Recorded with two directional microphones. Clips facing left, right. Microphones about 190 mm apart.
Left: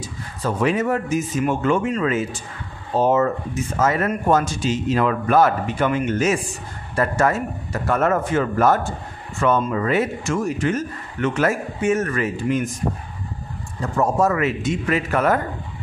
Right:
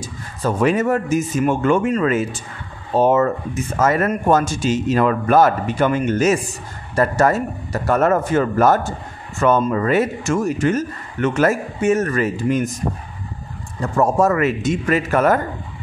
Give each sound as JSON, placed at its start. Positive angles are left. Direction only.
{"t": 0.0, "sound": "a man's voice", "side_deg": -45}
{"t": 3.8, "sound": "a man's voice", "side_deg": -50}
{"t": 13.9, "sound": "a man's voice", "side_deg": -50}